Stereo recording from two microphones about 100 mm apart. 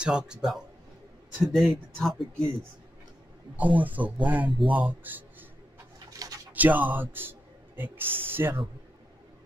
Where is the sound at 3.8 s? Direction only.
15° right (ahead or behind).